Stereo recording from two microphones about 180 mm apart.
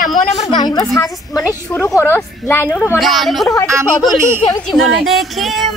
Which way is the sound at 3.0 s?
Centre (ahead or behind).